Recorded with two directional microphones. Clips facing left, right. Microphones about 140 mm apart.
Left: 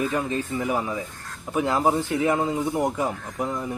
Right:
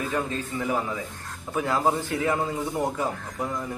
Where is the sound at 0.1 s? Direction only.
15° left (ahead or behind).